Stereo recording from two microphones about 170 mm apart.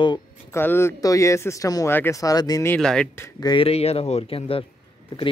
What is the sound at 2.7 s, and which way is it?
Speech, 5° left (ahead or behind).